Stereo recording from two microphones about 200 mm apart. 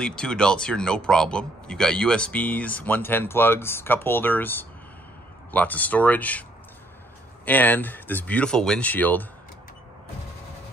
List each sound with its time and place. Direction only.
0.0 s speech: 5° left (ahead or behind)
7.4 s speech: 10° left (ahead or behind)